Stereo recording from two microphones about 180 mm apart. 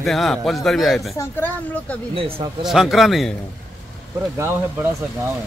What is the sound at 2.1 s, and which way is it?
Speech, 30° right (ahead or behind).